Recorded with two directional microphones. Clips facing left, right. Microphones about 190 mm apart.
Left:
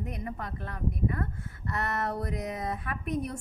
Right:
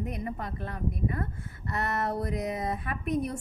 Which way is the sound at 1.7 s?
25° right (ahead or behind).